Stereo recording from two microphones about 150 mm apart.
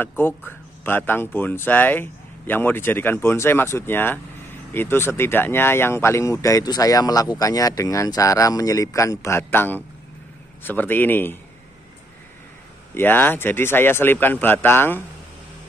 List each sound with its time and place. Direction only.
0.5 s speech: 15° left (ahead or behind)
12.9 s speech: 15° left (ahead or behind)